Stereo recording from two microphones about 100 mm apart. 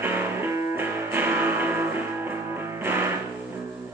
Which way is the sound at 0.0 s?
20° right (ahead or behind).